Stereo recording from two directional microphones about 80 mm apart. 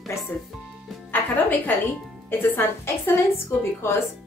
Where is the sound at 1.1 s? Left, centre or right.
Left.